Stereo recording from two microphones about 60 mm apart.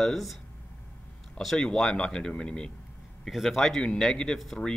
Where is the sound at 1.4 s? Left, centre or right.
Centre.